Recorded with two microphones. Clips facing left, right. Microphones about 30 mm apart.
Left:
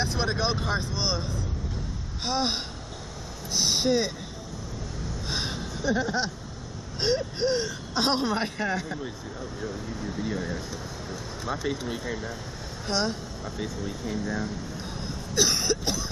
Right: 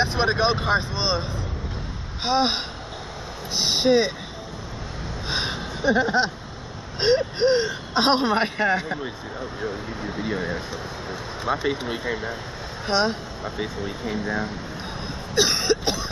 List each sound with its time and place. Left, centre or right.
0.0 s speech: right
5.3 s speech: right